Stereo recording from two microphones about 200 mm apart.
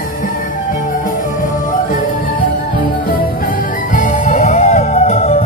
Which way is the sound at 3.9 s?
40° left (ahead or behind).